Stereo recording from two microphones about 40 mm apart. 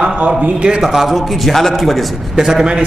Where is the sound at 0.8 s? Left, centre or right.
Centre.